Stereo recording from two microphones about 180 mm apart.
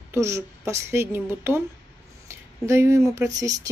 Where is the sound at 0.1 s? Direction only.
15° right (ahead or behind).